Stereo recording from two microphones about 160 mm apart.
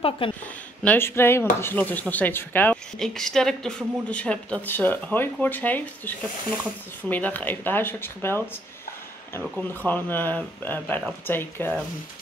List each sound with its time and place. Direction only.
0.2 s speech: 35° left (ahead or behind)
0.8 s speech: 15° left (ahead or behind)